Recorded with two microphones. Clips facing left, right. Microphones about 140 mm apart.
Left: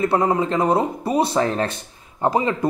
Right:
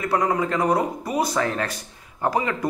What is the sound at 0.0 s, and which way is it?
A man's voice, 25° left (ahead or behind).